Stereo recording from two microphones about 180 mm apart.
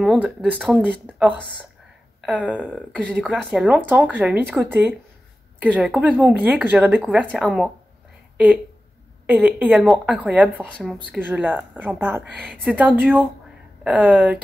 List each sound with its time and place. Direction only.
0.0 s speech: 5° right (ahead or behind)
9.2 s speech: 10° right (ahead or behind)
12.4 s speech: centre (ahead or behind)